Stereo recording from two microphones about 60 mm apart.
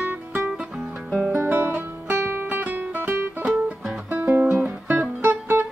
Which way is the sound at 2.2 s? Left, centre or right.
Right.